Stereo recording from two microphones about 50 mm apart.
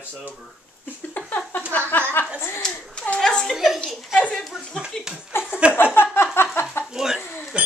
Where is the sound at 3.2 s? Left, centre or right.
Centre.